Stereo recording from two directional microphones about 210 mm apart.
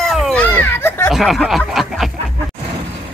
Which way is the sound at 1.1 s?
Centre (ahead or behind).